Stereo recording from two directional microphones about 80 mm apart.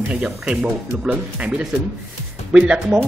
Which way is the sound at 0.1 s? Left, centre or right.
Centre.